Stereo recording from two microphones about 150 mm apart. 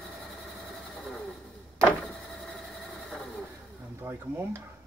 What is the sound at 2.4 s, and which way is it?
Train, centre (ahead or behind).